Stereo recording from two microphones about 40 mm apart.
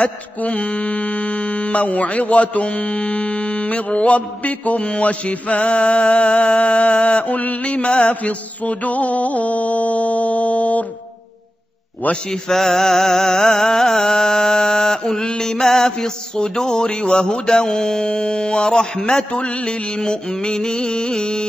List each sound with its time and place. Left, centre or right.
0.5 s speech: left
8.2 s speech: left
12.3 s music: centre
19.3 s mantra: left